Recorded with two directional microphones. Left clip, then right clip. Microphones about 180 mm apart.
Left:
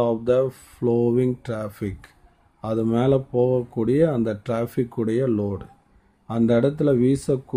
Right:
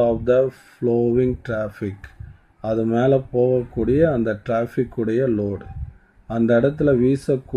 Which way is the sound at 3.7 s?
20° left (ahead or behind).